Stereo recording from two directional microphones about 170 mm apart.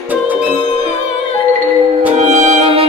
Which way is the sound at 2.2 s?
45° right (ahead or behind).